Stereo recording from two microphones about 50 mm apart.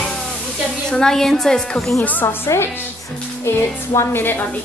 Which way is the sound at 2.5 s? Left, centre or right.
Left.